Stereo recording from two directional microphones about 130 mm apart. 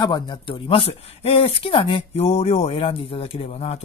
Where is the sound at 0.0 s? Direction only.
40° left (ahead or behind).